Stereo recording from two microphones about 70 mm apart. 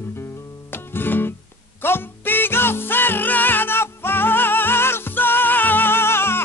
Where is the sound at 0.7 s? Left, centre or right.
Left.